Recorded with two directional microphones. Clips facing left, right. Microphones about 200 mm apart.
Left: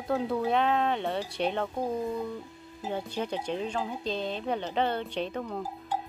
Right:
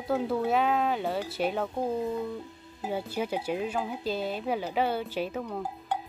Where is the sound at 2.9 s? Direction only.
5° right (ahead or behind).